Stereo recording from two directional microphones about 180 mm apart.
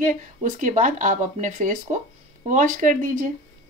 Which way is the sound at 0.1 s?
45° right (ahead or behind).